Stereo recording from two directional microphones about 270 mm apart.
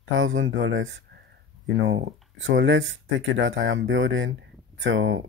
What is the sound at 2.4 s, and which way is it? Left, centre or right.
Speech, right.